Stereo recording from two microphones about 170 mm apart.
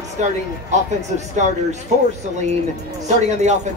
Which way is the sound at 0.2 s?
45° right (ahead or behind).